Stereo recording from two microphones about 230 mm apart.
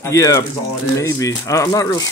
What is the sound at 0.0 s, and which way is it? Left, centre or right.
Speech, centre.